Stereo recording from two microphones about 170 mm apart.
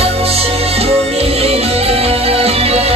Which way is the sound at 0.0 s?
35° right (ahead or behind).